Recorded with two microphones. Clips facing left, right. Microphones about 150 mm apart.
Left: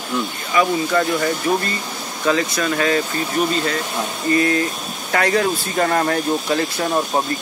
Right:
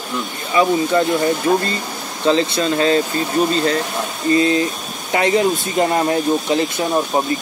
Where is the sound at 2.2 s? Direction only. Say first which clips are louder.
Right 3 dB; 25° right (ahead or behind).